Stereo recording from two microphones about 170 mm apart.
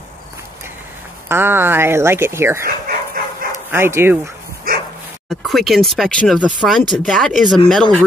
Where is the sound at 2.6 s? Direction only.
60° right (ahead or behind).